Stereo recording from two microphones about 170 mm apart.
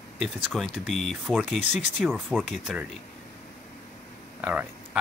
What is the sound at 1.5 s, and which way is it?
Speech, 40° left (ahead or behind).